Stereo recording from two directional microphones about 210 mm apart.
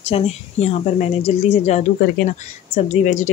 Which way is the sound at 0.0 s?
30° left (ahead or behind).